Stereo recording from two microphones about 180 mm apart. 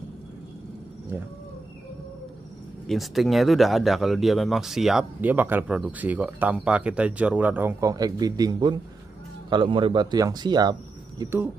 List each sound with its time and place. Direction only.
2.9 s speech: centre (ahead or behind); by 11.2 s 20° right (ahead or behind)